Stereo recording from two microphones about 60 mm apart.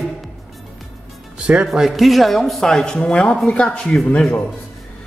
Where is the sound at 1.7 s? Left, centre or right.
Centre.